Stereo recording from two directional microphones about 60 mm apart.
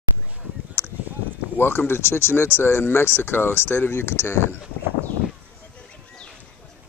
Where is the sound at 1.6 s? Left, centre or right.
Left.